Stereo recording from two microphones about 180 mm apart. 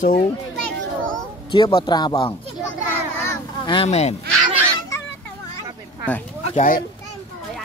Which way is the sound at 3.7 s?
35° left (ahead or behind).